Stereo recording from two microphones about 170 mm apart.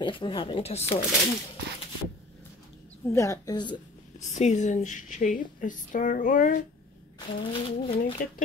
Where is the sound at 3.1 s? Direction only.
15° left (ahead or behind).